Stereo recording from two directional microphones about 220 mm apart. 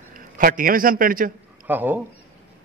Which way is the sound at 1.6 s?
10° right (ahead or behind).